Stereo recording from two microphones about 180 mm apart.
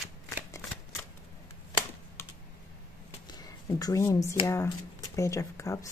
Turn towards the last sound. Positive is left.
turn(degrees=15)  # may be behind; listen again after turning